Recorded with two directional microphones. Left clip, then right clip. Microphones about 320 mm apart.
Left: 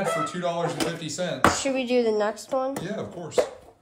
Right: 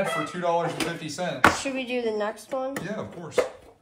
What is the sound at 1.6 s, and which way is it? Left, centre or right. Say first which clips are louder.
Speech: left 5 dB; left.